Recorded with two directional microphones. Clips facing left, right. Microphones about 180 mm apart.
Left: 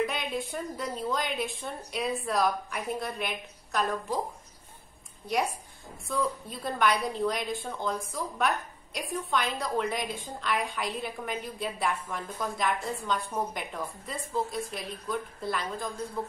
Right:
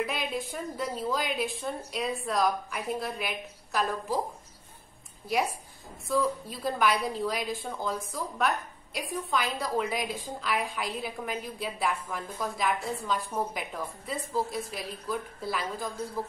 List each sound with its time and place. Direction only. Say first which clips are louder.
0.0 s a woman's voice: left 1 dB; centre (ahead or behind)
5.3 s a woman's voice: even; 5° right (ahead or behind)